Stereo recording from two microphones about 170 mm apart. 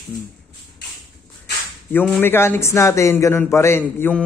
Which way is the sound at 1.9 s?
10° left (ahead or behind).